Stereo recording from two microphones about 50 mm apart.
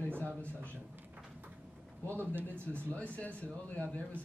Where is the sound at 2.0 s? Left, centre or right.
Right.